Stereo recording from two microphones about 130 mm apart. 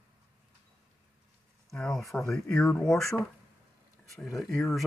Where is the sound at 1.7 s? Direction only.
5° left (ahead or behind).